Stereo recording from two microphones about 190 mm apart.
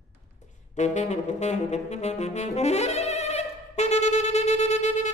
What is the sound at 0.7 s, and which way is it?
Saxophone, 40° left (ahead or behind).